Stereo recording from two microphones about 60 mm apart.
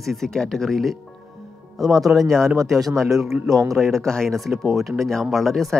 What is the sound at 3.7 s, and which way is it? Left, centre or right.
Speech, centre.